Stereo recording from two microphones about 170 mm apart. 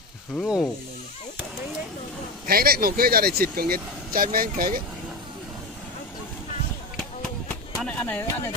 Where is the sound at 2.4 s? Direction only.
65° right (ahead or behind).